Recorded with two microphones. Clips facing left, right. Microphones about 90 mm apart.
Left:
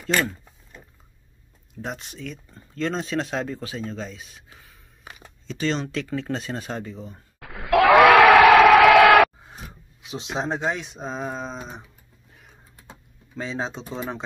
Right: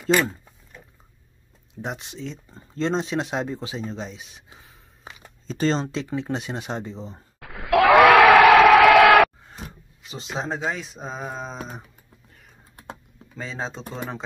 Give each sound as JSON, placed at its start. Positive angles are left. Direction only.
{"t": 1.8, "sound": "speech", "side_deg": -20}
{"t": 7.3, "sound": "crowd", "side_deg": 0}
{"t": 10.0, "sound": "speech", "side_deg": 0}
{"t": 13.4, "sound": "speech", "side_deg": 0}